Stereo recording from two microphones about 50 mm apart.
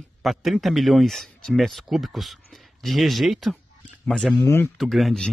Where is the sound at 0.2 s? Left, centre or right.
Centre.